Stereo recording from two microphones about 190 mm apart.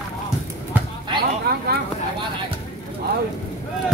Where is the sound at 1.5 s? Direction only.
60° right (ahead or behind).